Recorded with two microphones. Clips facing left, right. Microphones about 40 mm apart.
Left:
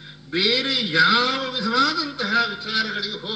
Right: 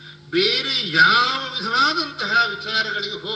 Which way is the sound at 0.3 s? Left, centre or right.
Right.